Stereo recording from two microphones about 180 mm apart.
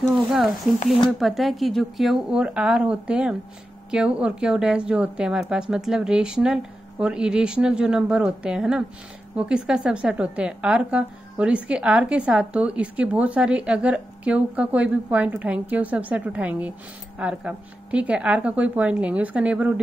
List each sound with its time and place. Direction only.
0.3 s a woman's voice: centre (ahead or behind)